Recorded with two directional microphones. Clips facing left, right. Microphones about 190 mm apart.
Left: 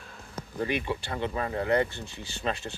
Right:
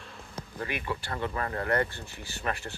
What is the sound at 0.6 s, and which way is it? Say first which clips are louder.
Speech: left 5 dB; 25° left (ahead or behind).